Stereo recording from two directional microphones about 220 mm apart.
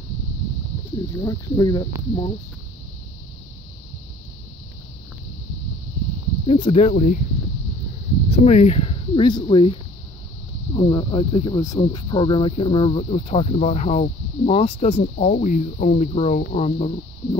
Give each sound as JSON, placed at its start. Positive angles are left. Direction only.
{"t": 1.1, "sound": "speech", "side_deg": 15}
{"t": 6.4, "sound": "speech", "side_deg": 25}
{"t": 8.3, "sound": "speech", "side_deg": 30}